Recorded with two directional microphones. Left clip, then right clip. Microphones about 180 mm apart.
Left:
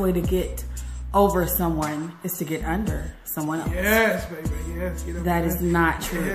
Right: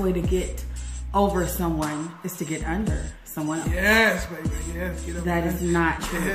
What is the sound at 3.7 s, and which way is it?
Speech, 20° right (ahead or behind).